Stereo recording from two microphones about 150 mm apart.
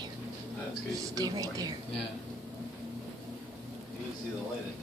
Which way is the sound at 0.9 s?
25° right (ahead or behind).